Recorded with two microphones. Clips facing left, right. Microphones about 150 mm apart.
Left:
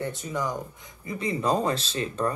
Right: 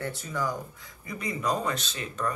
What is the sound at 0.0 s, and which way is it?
Speech, 20° left (ahead or behind).